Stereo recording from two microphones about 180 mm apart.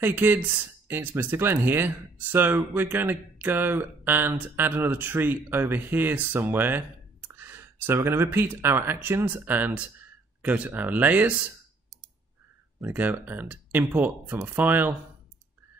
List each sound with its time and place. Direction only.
0.0 s speech: 10° right (ahead or behind)
12.8 s speech: 10° right (ahead or behind)